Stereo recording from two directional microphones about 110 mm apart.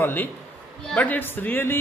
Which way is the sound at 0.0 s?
15° left (ahead or behind).